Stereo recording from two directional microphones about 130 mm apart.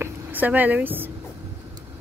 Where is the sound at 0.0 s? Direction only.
15° right (ahead or behind).